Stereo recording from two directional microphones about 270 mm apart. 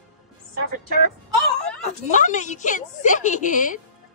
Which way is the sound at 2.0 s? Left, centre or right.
Left.